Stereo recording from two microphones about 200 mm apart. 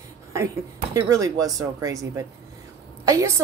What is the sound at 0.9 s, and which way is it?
A woman's voice, 15° right (ahead or behind).